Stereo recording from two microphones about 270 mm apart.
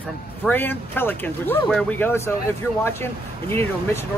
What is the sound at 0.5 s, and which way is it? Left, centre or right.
Speech, centre.